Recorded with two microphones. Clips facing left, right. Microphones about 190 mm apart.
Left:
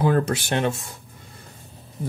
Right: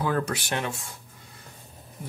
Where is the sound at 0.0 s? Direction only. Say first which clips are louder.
Left 6 dB; 25° left (ahead or behind).